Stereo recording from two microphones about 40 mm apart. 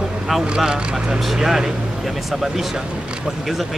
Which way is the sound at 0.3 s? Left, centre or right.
Centre.